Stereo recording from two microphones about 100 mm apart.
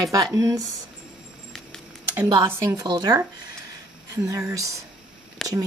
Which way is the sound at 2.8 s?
45° right (ahead or behind).